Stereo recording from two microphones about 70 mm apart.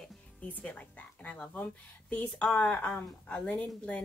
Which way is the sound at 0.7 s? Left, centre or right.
Centre.